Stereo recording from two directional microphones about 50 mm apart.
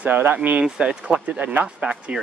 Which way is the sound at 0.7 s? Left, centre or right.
Right.